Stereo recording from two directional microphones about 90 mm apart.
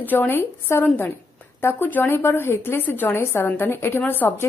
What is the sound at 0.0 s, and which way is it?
A woman's voice, 20° left (ahead or behind).